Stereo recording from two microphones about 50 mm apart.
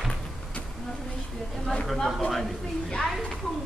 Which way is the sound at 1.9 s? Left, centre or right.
Centre.